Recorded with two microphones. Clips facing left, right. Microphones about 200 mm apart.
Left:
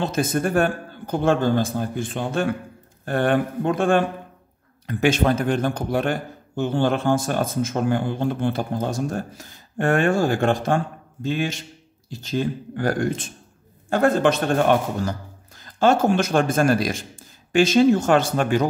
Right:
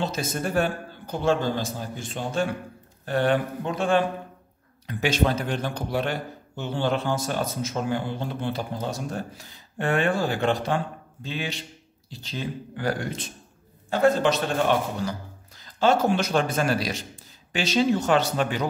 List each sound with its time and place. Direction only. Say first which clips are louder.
0.0 s a man's voice: left 5 dB; 55° left (ahead or behind)